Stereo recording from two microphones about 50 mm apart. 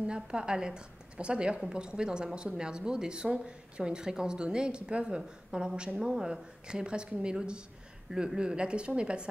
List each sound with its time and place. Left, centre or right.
0.0 s a woman's voice: centre